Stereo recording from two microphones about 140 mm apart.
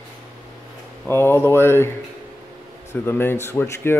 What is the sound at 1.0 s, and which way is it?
Speech, 15° left (ahead or behind).